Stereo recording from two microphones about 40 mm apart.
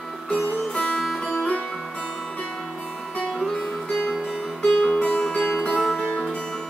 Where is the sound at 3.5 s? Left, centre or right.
Centre.